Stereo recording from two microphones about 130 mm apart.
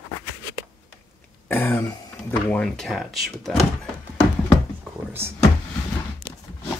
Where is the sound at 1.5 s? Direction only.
15° left (ahead or behind).